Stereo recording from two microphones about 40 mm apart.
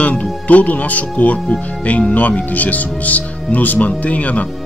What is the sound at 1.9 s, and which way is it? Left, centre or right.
Speech, left.